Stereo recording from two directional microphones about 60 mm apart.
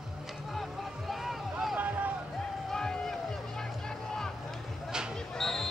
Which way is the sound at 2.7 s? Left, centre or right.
Centre.